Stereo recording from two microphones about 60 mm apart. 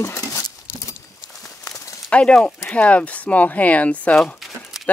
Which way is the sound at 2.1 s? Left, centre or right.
Centre.